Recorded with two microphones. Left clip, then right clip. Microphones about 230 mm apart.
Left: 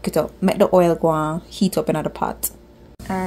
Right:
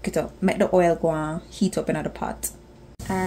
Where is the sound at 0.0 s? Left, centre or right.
Left.